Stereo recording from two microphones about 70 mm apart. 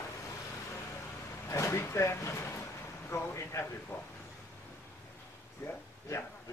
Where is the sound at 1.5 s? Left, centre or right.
Left.